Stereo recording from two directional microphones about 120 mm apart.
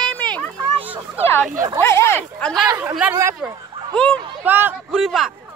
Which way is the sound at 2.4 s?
10° left (ahead or behind).